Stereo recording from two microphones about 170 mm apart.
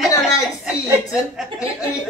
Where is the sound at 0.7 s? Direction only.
5° right (ahead or behind).